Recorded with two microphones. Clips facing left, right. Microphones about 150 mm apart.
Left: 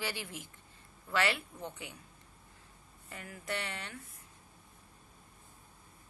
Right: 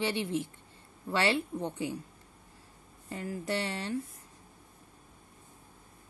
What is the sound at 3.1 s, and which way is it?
Speech, 30° right (ahead or behind).